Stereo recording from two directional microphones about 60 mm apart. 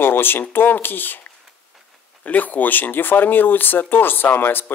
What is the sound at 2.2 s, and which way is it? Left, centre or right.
Speech, left.